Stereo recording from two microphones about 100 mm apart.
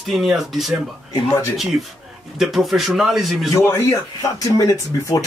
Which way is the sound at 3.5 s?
30° left (ahead or behind).